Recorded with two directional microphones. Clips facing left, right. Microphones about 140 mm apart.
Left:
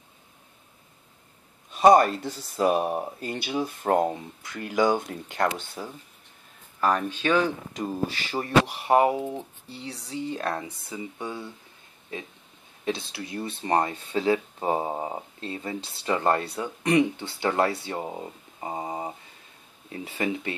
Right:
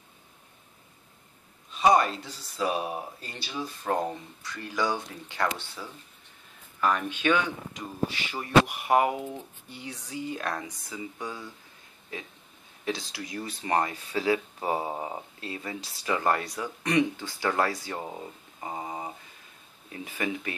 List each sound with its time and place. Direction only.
1.8 s speech: 50° left (ahead or behind)
6.8 s speech: 35° left (ahead or behind)
12.8 s speech: 25° left (ahead or behind)
19.9 s speech: 30° left (ahead or behind)